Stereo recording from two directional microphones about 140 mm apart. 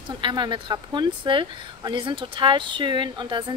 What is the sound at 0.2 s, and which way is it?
A woman's voice, 35° right (ahead or behind).